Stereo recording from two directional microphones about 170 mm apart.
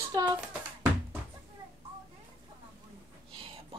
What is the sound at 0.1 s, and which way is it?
Speech, 25° right (ahead or behind).